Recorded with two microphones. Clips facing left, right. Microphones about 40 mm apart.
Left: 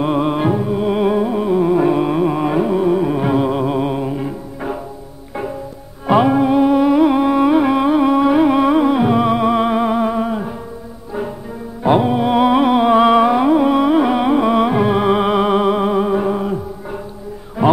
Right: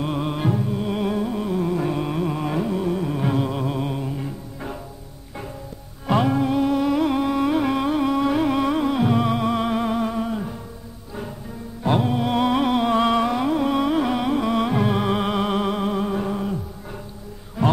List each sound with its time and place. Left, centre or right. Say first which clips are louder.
0.0 s music: left 8 dB; left
6.0 s music: left 7 dB; centre
11.8 s music: left 7 dB; left
17.6 s heart sounds: left 7 dB; centre